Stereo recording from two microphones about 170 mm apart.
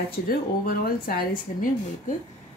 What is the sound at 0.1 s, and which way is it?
Speech, 60° left (ahead or behind).